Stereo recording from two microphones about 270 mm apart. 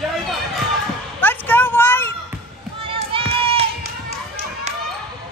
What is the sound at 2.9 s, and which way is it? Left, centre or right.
Run, centre.